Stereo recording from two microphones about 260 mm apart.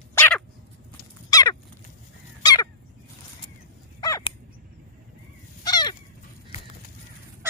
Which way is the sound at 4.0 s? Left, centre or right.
Centre.